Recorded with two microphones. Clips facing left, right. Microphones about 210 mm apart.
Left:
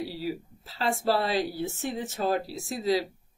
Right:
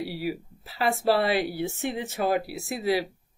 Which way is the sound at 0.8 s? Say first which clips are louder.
Right 3 dB; 65° right (ahead or behind).